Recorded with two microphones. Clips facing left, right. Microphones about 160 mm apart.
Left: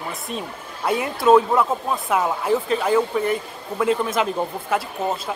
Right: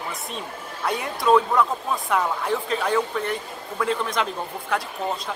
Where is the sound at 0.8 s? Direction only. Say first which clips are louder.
Left 4 dB; 5° left (ahead or behind).